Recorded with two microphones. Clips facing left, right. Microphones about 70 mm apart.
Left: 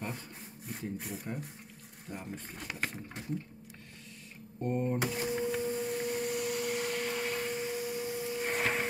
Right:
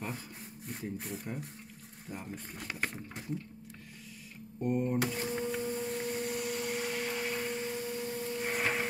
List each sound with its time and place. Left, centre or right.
0.7 s speech: centre
4.6 s speech: centre
5.0 s a sound: centre